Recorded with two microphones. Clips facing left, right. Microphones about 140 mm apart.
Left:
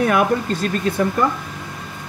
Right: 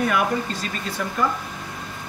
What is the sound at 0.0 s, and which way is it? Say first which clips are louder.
Speech: left 5 dB; 55° left (ahead or behind).